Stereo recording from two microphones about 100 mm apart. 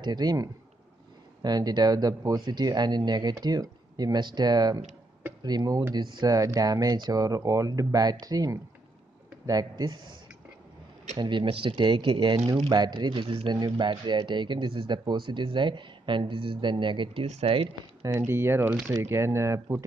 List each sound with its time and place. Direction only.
0.0 s speech: 45° right (ahead or behind)
11.1 s speech: 50° right (ahead or behind)
13.5 s speech: 50° right (ahead or behind); by 17.6 s 75° right (ahead or behind)
18.0 s speech: 25° right (ahead or behind)